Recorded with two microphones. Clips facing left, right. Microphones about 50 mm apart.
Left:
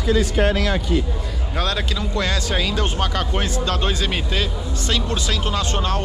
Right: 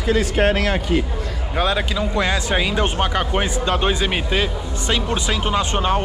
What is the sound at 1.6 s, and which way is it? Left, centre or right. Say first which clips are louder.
Speech: right 4 dB; centre.